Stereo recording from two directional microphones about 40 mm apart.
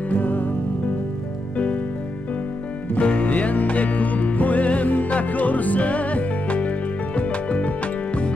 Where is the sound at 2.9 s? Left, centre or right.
Left.